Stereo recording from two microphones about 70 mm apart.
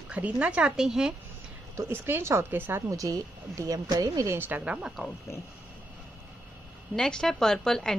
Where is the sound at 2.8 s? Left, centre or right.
Right.